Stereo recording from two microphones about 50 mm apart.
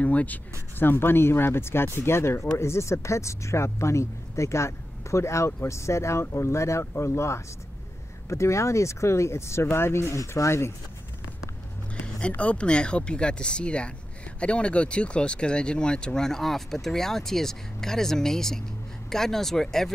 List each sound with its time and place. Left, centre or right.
0.0 s a sound: left
0.7 s speech: left
6.2 s speech: left
12.2 s speech: left; by 19.9 s centre